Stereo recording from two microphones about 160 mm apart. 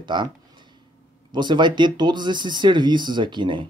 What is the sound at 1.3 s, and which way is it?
Speech, 30° right (ahead or behind).